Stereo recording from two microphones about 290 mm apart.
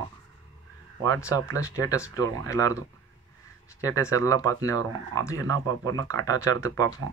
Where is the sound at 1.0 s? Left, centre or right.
Centre.